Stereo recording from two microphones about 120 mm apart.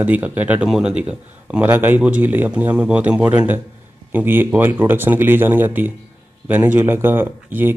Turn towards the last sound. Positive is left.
turn(degrees=-15)  # may be behind; listen again after turning